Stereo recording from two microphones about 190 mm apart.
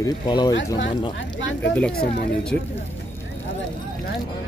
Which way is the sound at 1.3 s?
75° left (ahead or behind).